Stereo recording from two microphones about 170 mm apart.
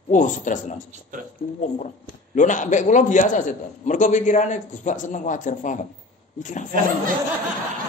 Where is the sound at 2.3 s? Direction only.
45° left (ahead or behind).